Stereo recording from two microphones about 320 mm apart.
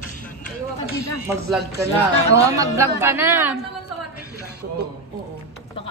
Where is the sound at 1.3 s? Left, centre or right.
Centre.